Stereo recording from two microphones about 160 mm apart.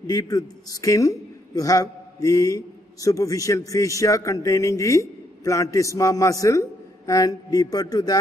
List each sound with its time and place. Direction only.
0.0 s a woman's voice: 25° left (ahead or behind)